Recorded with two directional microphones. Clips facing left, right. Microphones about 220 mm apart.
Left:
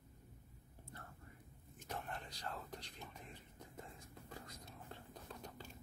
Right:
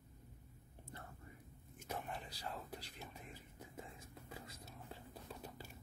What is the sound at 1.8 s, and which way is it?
Whispering, 10° right (ahead or behind).